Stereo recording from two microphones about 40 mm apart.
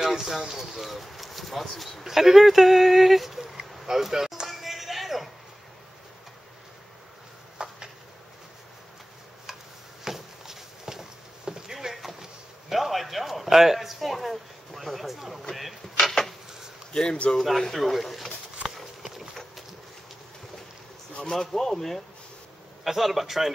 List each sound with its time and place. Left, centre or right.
0.0 s speech: centre
2.0 s a sound: centre
7.6 s a sound: right
10.0 s walk: centre
15.5 s a sound: centre
16.9 s speech: left
17.4 s speech: centre
21.5 s speech: centre
22.8 s speech: centre